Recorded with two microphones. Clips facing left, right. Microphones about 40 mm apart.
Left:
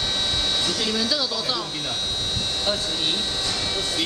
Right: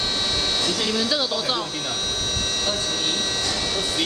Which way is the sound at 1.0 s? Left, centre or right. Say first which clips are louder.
Right 2 dB; right.